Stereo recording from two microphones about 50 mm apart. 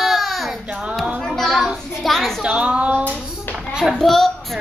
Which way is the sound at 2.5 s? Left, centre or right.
Right.